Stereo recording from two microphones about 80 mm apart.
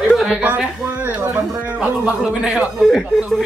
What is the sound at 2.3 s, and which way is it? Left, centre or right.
Speech, centre.